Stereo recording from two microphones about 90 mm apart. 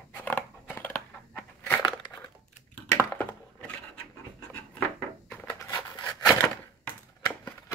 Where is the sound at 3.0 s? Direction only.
25° left (ahead or behind).